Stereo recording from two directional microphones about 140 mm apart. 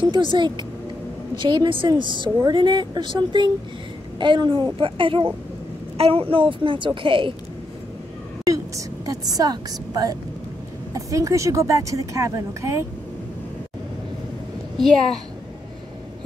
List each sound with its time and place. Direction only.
0.0 s a woman's voice: 35° right (ahead or behind)
8.5 s a sound: 25° right (ahead or behind)
10.9 s speech: 20° right (ahead or behind)